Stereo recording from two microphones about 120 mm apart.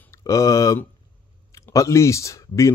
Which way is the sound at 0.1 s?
30° left (ahead or behind).